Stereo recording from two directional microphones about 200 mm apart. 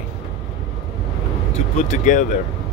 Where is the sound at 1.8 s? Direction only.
40° left (ahead or behind).